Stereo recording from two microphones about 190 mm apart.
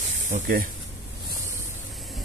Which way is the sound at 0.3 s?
45° right (ahead or behind).